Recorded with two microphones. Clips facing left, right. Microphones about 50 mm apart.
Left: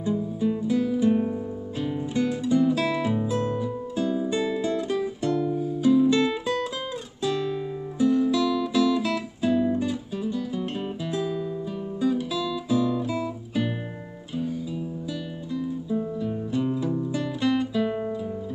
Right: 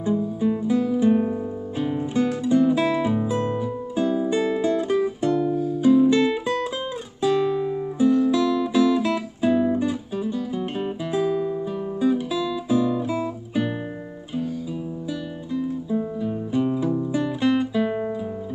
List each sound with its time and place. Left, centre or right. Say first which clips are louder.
0.1 s music: right 3 dB; centre
2.4 s guitar: right 3 dB; centre
5.8 s music: right 3 dB; centre
8.3 s guitar: right 3 dB; centre
12.0 s music: right 3 dB; centre
15.5 s music: right 3 dB; centre